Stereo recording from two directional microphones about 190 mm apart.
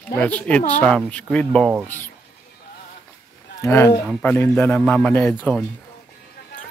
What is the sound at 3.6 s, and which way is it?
Speech, 10° left (ahead or behind).